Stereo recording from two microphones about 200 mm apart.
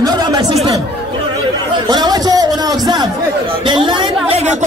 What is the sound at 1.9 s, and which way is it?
Speech, 20° right (ahead or behind).